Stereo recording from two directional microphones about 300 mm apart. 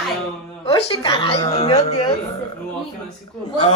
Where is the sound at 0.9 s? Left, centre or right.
Centre.